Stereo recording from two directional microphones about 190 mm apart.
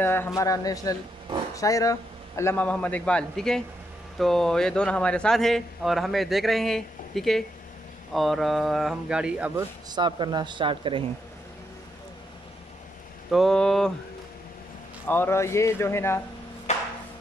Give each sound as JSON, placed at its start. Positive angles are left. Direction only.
{"t": 0.0, "sound": "a man's voice", "side_deg": 10}
{"t": 9.8, "sound": "speech", "side_deg": -25}
{"t": 13.3, "sound": "a man's voice", "side_deg": 0}
{"t": 15.0, "sound": "a man's voice", "side_deg": 10}
{"t": 16.7, "sound": "a sound", "side_deg": 35}